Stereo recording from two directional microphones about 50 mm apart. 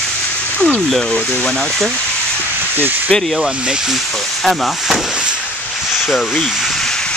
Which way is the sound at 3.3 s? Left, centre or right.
Centre.